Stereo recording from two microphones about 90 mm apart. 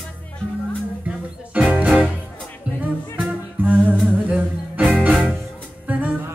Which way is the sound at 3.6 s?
15° right (ahead or behind).